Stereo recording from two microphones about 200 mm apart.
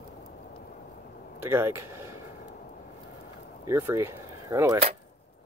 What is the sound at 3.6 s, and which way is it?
Speech, 15° right (ahead or behind).